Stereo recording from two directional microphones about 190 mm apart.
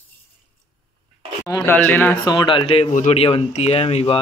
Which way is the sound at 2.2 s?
25° left (ahead or behind).